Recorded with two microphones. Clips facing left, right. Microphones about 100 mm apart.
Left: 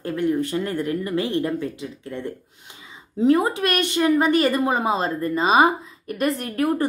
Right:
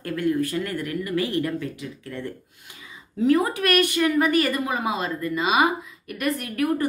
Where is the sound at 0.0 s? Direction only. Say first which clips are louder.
Left 1 dB; 20° left (ahead or behind).